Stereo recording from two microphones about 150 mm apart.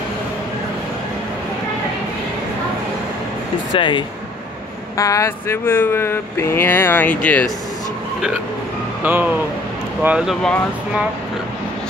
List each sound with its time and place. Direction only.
3.7 s speech: 35° left (ahead or behind)
4.9 s speech: 20° left (ahead or behind)
9.0 s speech: 10° right (ahead or behind)